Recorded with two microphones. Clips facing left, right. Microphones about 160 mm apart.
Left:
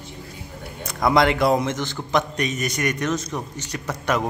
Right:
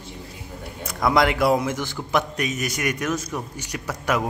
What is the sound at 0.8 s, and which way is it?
A man's voice, centre (ahead or behind).